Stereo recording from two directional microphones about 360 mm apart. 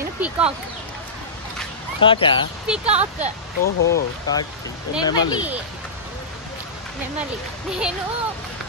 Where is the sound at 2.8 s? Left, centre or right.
Centre.